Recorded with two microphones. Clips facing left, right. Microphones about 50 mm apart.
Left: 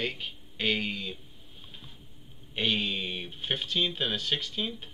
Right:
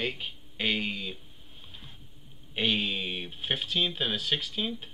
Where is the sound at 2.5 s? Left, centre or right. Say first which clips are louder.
Right 1 dB; centre.